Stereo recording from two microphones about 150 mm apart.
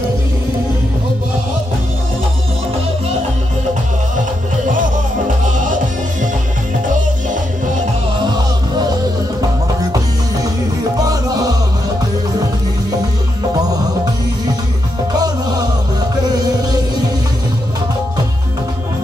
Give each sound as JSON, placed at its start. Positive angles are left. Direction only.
{"t": 11.0, "sound": "music", "side_deg": -25}
{"t": 15.1, "sound": "music", "side_deg": -25}